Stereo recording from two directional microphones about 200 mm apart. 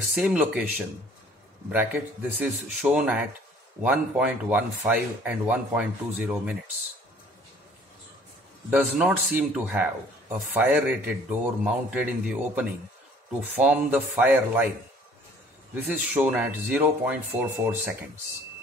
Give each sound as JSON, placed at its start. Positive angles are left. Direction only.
{"t": 0.1, "sound": "a man's voice", "side_deg": -5}
{"t": 8.6, "sound": "a man's voice", "side_deg": -5}
{"t": 13.4, "sound": "a man's voice", "side_deg": -10}
{"t": 15.7, "sound": "a man's voice", "side_deg": -10}